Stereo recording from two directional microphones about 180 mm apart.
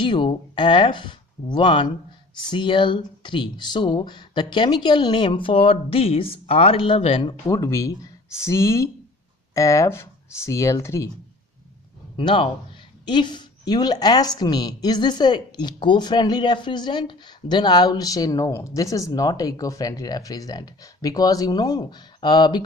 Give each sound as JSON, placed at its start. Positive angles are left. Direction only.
{"t": 0.0, "sound": "a woman's voice", "side_deg": 25}
{"t": 7.4, "sound": "speech", "side_deg": 15}
{"t": 12.2, "sound": "a woman's voice", "side_deg": 30}